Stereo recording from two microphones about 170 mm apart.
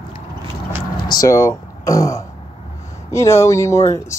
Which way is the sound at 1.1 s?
20° left (ahead or behind).